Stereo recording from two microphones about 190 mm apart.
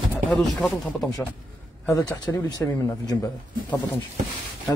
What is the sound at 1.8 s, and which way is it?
Speech, 15° left (ahead or behind).